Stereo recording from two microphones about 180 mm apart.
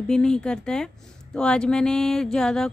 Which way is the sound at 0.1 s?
5° left (ahead or behind).